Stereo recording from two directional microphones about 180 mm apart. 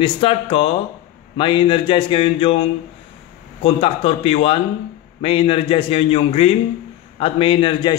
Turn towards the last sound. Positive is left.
turn(degrees=30)  # may be behind; listen again after turning